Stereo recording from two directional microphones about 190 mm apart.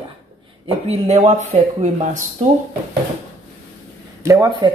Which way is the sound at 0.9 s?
35° right (ahead or behind).